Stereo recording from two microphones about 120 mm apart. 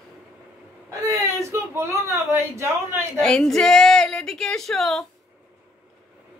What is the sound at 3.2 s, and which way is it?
Speech, 5° left (ahead or behind).